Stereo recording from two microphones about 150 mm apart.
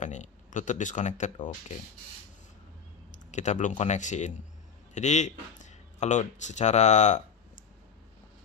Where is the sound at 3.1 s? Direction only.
55° left (ahead or behind).